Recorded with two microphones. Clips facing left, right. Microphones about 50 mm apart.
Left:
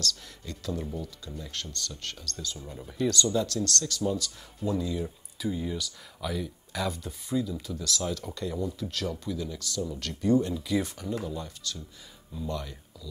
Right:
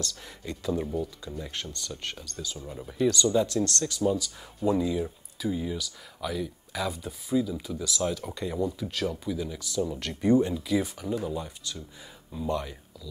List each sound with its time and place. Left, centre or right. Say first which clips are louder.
0.0 s speech: left 1 dB; right
5.4 s speech: right 1 dB; centre
10.5 s speech: right 1 dB; centre